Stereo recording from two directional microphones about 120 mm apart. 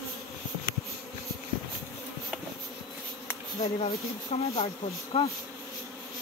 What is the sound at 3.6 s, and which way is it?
Speech, 60° left (ahead or behind).